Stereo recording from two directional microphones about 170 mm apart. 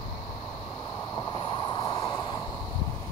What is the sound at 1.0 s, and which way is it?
Vehicle, 25° left (ahead or behind).